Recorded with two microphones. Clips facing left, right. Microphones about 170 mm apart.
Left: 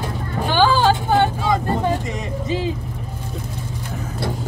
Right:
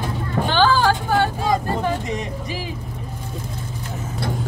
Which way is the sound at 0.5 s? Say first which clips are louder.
Left 2 dB; 15° left (ahead or behind).